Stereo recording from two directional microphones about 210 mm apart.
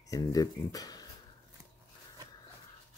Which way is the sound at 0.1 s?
15° left (ahead or behind).